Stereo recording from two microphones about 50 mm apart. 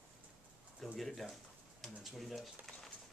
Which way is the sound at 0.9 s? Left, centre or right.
Centre.